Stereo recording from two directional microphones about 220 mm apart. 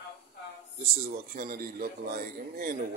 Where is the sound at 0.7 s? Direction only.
30° right (ahead or behind).